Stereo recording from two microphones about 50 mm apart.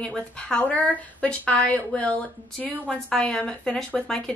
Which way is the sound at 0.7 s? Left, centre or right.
Left.